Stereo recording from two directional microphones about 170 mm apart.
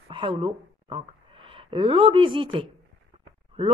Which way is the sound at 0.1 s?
30° right (ahead or behind).